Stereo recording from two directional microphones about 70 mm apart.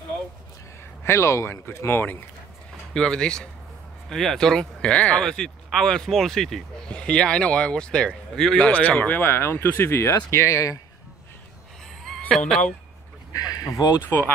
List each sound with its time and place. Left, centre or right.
1.0 s speech: left
2.9 s speech: centre; by 10.8 s left
12.4 s speech: centre
13.3 s a sound: left